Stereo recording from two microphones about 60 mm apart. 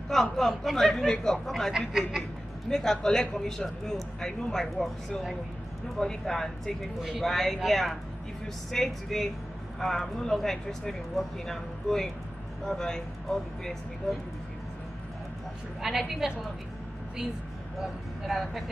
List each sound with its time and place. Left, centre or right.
0.1 s speech: centre
2.7 s speech: centre
7.0 s speech: centre
15.8 s speech: centre
17.7 s speech: centre